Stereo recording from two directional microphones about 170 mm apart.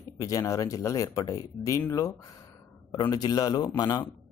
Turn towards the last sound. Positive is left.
turn(degrees=25)  # may be behind; listen again after turning